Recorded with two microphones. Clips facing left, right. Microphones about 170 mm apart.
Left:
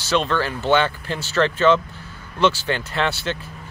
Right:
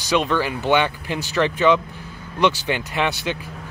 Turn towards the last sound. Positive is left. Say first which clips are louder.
# even
turn(degrees=-15)  # may be behind; listen again after turning